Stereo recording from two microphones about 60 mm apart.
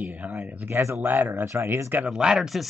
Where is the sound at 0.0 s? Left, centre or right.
Right.